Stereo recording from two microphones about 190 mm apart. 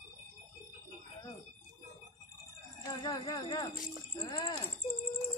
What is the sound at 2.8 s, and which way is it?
Speech, 20° left (ahead or behind).